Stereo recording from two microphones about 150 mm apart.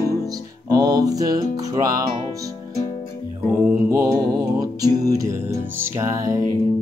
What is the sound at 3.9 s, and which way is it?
Music, 25° right (ahead or behind).